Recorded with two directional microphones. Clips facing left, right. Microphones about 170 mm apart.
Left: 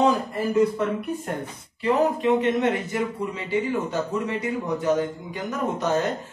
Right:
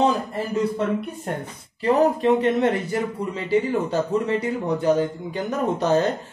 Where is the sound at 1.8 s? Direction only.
35° right (ahead or behind).